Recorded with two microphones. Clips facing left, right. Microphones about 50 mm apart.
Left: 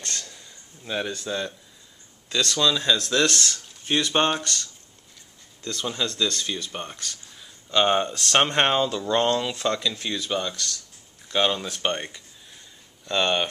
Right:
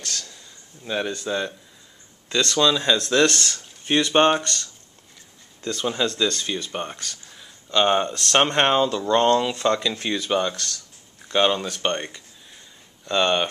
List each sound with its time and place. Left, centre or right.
0.0 s a sound: left
0.8 s speech: centre
2.5 s speech: centre
5.6 s speech: centre
7.1 s speech: centre
9.8 s speech: centre
11.2 s speech: centre